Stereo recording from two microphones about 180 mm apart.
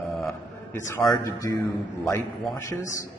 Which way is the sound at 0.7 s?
15° left (ahead or behind).